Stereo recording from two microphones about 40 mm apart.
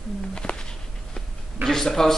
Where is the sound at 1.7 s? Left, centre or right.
Centre.